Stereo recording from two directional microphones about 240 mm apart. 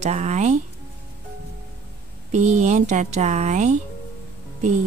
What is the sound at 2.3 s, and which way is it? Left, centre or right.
Speech, right.